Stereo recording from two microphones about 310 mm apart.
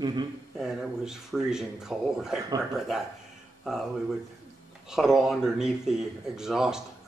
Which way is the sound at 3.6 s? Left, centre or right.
Centre.